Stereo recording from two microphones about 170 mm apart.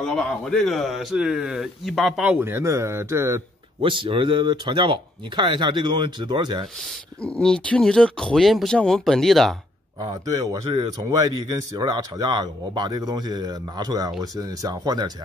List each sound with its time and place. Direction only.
0.0 s a man's voice: centre (ahead or behind); by 3.4 s 15° right (ahead or behind)
3.8 s speech: 30° right (ahead or behind)
7.2 s a man's voice: 5° left (ahead or behind)
10.0 s speech: 20° right (ahead or behind)